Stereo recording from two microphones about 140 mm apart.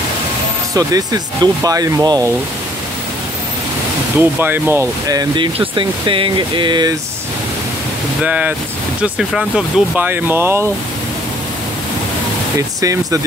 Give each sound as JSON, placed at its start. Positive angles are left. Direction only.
{"t": 0.7, "sound": "speech", "side_deg": -25}
{"t": 4.2, "sound": "speech", "side_deg": -15}
{"t": 8.2, "sound": "speech", "side_deg": -10}
{"t": 12.5, "sound": "speech", "side_deg": -25}